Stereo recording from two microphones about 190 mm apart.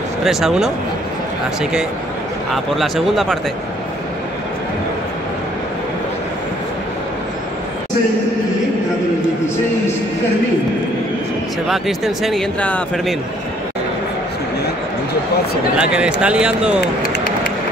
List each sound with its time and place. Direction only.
0.2 s speech: centre (ahead or behind)
11.7 s speech: centre (ahead or behind)
15.8 s speech: 5° right (ahead or behind)
16.8 s a sound: 50° left (ahead or behind)